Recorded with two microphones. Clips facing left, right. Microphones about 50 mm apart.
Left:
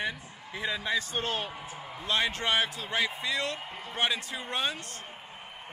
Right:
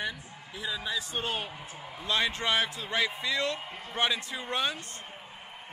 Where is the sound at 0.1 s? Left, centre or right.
Centre.